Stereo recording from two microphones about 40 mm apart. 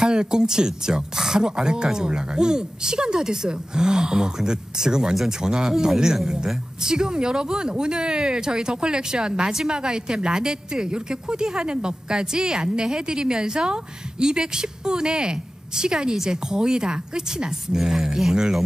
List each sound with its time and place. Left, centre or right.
0.0 s a man's voice: centre
17.7 s speech: centre